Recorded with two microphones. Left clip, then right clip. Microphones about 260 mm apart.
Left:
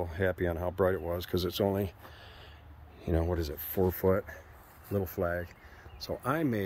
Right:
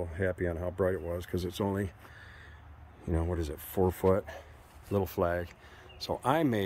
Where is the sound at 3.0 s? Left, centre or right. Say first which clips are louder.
Left 3 dB; centre.